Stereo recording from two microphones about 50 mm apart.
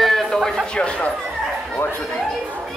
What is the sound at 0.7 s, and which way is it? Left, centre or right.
Speech, left.